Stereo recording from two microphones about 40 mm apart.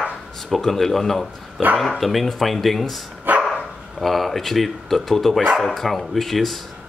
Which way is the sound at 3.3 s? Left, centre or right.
Right.